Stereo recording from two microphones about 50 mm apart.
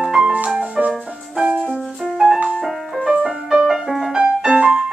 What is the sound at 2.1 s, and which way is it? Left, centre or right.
Music, centre.